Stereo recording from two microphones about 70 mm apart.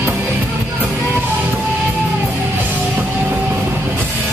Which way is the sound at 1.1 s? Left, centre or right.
Right.